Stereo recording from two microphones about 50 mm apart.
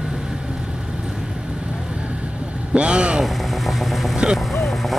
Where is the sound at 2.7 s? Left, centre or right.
Right.